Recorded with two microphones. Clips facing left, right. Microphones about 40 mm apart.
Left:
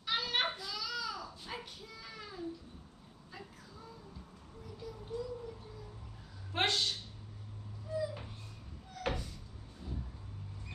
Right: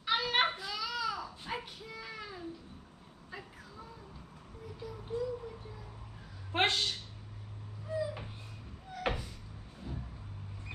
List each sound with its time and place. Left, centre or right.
0.0 s baby cry: centre
4.7 s music: centre
6.5 s a woman's voice: right
8.0 s a sound: centre